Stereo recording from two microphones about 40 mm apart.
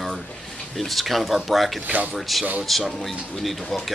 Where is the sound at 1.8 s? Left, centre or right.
Right.